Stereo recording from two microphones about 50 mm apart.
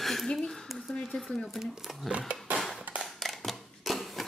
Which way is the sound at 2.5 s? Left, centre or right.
Centre.